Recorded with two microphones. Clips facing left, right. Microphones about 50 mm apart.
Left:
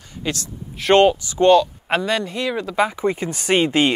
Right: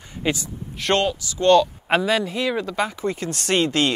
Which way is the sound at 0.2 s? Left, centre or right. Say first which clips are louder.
Right 2 dB; centre.